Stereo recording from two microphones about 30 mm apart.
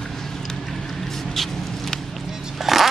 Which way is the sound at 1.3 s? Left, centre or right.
Centre.